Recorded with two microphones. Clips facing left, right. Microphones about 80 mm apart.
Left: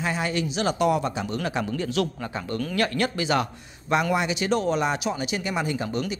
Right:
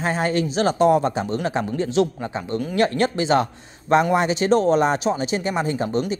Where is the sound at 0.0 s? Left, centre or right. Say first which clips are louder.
Right 5 dB; right.